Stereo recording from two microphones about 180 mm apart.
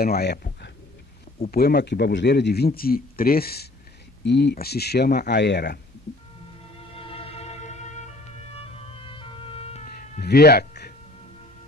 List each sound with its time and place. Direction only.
0.0 s a man's voice: 60° left (ahead or behind)
4.2 s a man's voice: 70° left (ahead or behind)
7.0 s music: 30° left (ahead or behind)
9.8 s cat: 55° left (ahead or behind)